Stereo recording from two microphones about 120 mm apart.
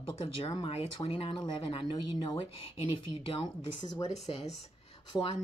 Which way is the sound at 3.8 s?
70° left (ahead or behind).